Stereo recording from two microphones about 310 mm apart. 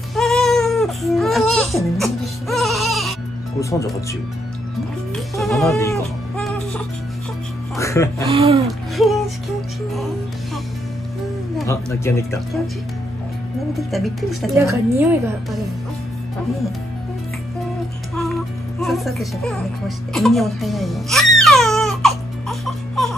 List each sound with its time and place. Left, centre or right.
0.1 s baby cry: centre
5.1 s music: centre
7.7 s speech: centre
8.3 s speech: centre
8.9 s music: centre
11.5 s speech: centre
13.7 s a woman's voice: centre
18.1 s music: centre